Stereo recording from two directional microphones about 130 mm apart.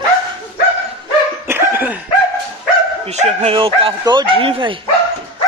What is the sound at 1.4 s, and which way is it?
Dog, 15° right (ahead or behind).